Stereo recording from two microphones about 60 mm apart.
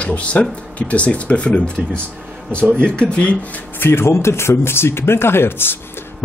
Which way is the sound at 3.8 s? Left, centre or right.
Left.